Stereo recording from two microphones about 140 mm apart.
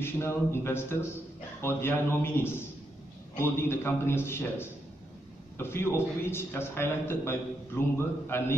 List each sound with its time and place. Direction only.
0.0 s a man's voice: 20° left (ahead or behind)